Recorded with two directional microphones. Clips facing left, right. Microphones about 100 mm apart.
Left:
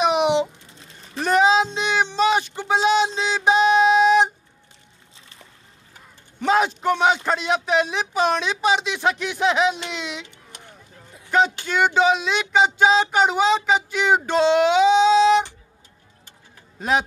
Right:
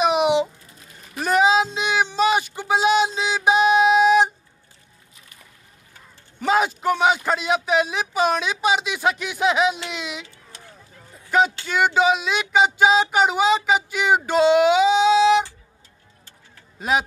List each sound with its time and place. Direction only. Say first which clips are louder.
0.0 s music: even; 5° right (ahead or behind)
0.6 s music: left 1 dB; 25° left (ahead or behind)
1.2 s a sound: left 1 dB; 5° right (ahead or behind)
6.4 s a man's voice: left 1 dB; 5° right (ahead or behind)
10.2 s a sound: left 1 dB; 20° left (ahead or behind)
11.6 s speech: even; 5° right (ahead or behind)
16.8 s speech: even; 5° right (ahead or behind)